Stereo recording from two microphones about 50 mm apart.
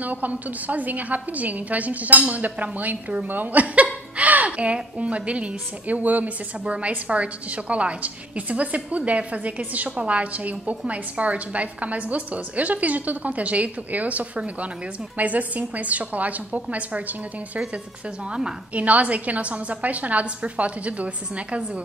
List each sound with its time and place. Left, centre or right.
0.0 s a woman's voice: right
18.8 s a woman's voice: right